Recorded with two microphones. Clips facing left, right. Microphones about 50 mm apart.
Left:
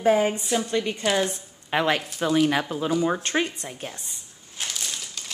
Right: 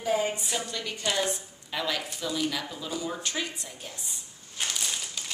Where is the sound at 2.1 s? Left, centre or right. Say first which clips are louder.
Left 9 dB; left.